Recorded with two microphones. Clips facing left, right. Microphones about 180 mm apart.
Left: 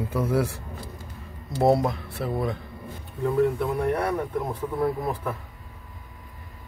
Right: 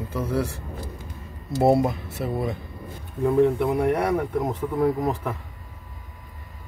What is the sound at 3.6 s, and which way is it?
Speech, 15° right (ahead or behind).